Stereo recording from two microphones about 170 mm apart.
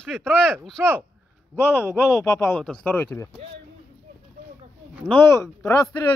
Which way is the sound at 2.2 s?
15° left (ahead or behind).